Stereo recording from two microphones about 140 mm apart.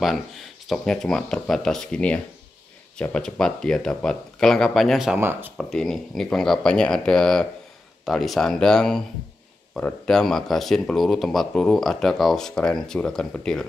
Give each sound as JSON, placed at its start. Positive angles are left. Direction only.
{"t": 0.7, "sound": "speech", "side_deg": 5}
{"t": 5.2, "sound": "speech", "side_deg": -15}
{"t": 5.6, "sound": "speech", "side_deg": 5}